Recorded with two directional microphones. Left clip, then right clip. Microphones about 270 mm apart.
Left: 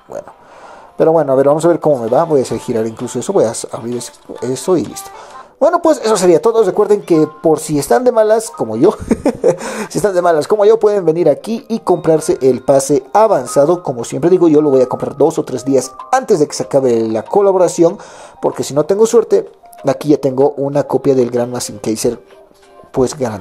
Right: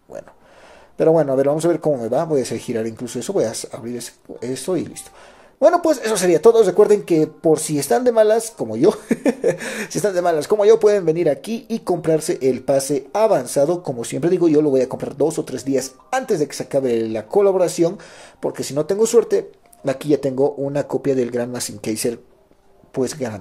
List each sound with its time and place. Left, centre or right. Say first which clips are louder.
0.9 s speech: left 5 dB; centre